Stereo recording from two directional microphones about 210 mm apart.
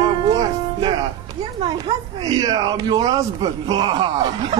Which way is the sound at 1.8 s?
15° right (ahead or behind).